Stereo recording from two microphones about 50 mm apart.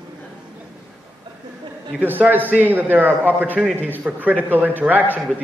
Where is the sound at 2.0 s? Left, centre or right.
Right.